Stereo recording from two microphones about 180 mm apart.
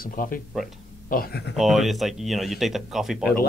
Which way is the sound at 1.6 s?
Centre (ahead or behind).